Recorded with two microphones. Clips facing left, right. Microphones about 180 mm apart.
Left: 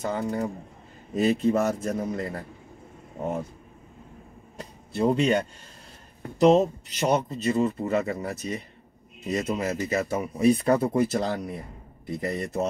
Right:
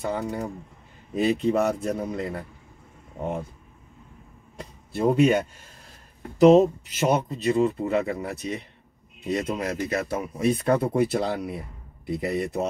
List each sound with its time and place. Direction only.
0.0 s speech: centre (ahead or behind)
4.9 s speech: 5° right (ahead or behind)